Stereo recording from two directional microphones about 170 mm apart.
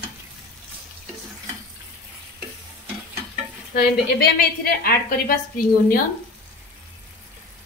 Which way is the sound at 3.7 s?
70° left (ahead or behind).